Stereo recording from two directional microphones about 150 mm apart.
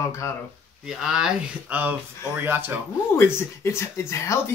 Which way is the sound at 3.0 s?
15° left (ahead or behind).